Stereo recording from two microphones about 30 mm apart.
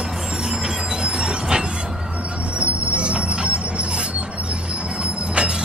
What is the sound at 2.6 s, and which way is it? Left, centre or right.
Train wheels squealing, right.